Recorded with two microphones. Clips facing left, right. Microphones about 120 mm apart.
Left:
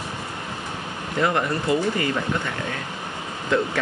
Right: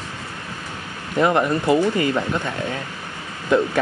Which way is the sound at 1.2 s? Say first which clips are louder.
Right 5 dB; 25° right (ahead or behind).